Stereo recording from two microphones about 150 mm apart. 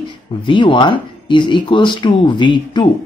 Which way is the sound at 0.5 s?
35° left (ahead or behind).